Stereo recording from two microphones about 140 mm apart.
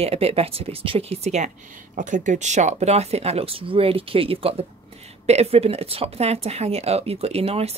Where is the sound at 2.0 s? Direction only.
65° right (ahead or behind).